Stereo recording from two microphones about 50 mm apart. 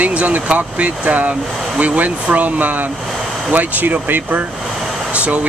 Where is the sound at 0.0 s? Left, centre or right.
Right.